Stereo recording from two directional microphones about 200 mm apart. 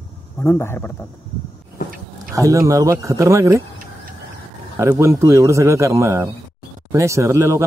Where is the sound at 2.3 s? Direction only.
15° right (ahead or behind).